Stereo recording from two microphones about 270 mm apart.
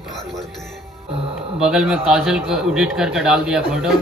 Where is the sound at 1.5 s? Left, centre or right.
Centre.